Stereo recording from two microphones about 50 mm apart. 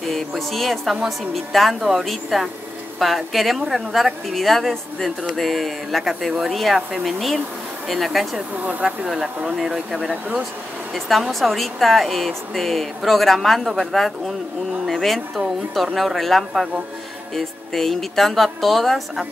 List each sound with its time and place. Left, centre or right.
0.0 s speech: centre
1.8 s speech: centre
8.8 s speech: centre
11.3 s speech: centre